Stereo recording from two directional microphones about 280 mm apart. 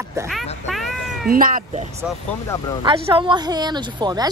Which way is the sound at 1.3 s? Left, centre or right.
Right.